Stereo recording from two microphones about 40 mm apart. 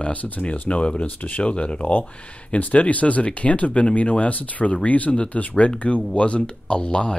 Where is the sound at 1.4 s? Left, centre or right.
Left.